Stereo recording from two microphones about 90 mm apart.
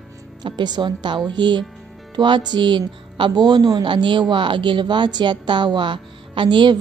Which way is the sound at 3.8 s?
60° right (ahead or behind).